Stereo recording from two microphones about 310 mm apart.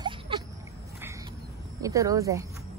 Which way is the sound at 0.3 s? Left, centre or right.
Centre.